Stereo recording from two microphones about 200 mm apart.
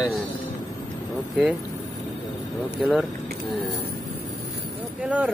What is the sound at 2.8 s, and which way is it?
Speech, centre (ahead or behind).